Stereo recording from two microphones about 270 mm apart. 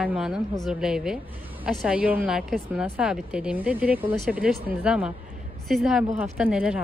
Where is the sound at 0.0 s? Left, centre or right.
Centre.